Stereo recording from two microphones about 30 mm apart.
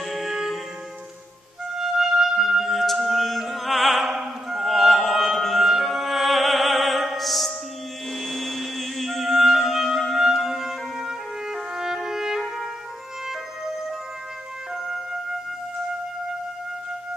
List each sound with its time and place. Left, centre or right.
0.0 s music: centre
1.8 s music: centre
3.4 s opera: centre
5.6 s music: centre
8.1 s a sound: centre
9.4 s music: centre